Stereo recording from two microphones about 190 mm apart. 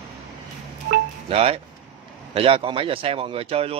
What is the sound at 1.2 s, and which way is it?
Speech, 30° right (ahead or behind).